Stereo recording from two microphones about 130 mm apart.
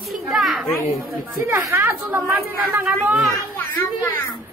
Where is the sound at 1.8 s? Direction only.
20° right (ahead or behind).